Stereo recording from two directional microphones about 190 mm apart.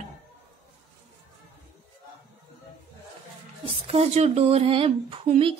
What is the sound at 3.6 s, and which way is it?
Speech, 30° right (ahead or behind).